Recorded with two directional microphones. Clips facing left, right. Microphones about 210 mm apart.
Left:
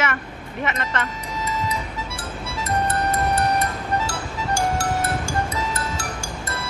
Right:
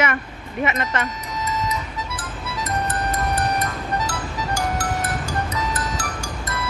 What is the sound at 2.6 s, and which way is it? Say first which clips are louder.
Music: left 3 dB; 25° left (ahead or behind).